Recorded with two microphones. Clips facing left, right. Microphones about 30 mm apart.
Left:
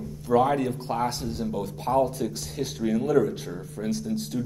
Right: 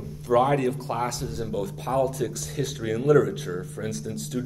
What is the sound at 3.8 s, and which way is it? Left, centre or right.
Speech, right.